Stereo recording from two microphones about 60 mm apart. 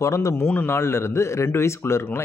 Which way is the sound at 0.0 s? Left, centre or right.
Left.